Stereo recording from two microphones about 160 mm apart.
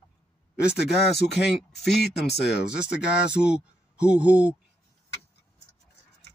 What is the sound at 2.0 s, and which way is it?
Speech, 90° left.